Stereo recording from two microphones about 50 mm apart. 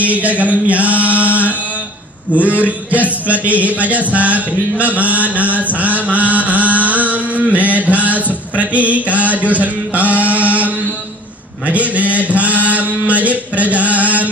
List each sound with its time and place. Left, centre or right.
0.0 s mantra: right
6.3 s chant: right
8.5 s mantra: right